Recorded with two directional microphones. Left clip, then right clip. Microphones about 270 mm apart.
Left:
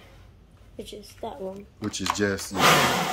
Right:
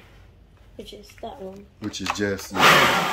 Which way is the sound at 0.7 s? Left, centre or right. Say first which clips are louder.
Left 1 dB; centre.